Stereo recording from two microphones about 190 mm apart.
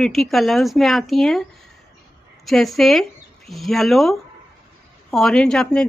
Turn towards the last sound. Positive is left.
turn(degrees=5)  # may be behind; listen again after turning